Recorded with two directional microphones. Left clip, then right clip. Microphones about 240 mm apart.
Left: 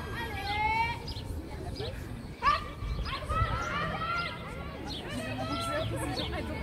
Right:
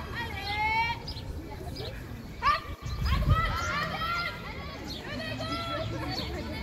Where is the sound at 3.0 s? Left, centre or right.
Right.